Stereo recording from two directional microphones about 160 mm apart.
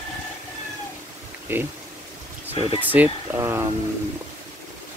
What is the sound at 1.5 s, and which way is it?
Speech, 15° right (ahead or behind).